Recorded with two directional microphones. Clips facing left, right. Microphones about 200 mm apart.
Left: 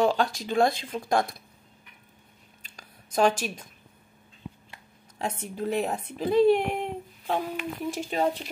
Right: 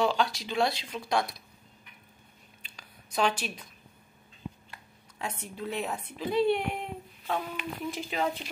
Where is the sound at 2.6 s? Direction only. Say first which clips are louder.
Left 3 dB; 45° left (ahead or behind).